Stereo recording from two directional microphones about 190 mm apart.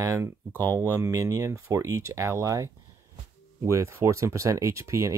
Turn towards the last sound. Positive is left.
turn(degrees=-15)  # may be behind; listen again after turning